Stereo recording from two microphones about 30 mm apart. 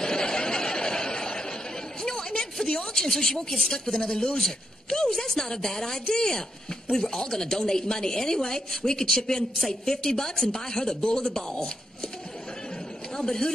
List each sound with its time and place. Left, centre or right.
0.0 s a sound: left
3.2 s a woman's voice: centre
4.4 s a woman's voice: centre
13.1 s speech: left